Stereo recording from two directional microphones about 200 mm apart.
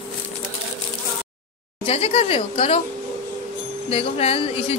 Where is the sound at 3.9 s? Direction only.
30° left (ahead or behind).